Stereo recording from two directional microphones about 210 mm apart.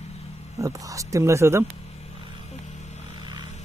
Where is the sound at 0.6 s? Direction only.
15° right (ahead or behind).